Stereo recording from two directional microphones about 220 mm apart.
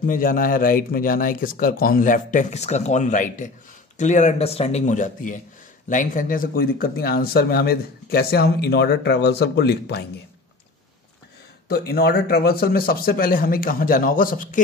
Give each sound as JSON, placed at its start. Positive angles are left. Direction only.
{"t": 0.0, "sound": "speech", "side_deg": 40}
{"t": 11.7, "sound": "speech", "side_deg": 45}